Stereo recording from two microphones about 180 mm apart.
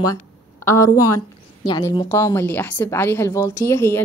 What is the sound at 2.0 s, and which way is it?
A woman's voice, 15° left (ahead or behind).